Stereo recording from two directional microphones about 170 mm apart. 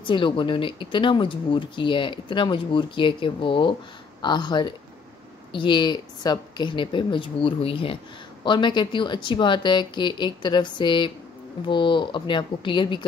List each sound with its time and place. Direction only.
0.0 s speech: 30° left (ahead or behind)